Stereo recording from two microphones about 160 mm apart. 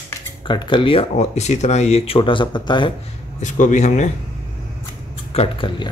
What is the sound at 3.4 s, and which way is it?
Speech, 50° left (ahead or behind).